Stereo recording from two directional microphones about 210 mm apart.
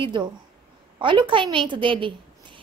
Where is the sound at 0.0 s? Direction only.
20° right (ahead or behind).